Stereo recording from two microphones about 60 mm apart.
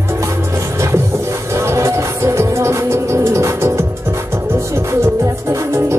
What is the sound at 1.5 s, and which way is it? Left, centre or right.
Music, right.